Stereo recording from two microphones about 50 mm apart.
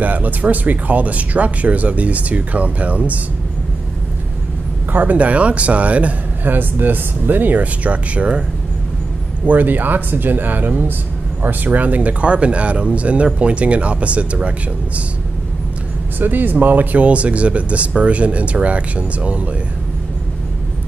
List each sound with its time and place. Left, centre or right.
0.0 s speech: right
4.9 s speech: right
6.5 s speech: right
9.5 s speech: right
16.2 s speech: right